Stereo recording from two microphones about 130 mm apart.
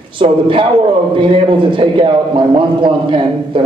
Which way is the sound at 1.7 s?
40° right (ahead or behind).